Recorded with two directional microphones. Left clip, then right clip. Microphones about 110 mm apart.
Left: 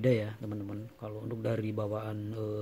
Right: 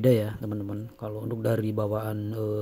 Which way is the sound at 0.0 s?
20° right (ahead or behind).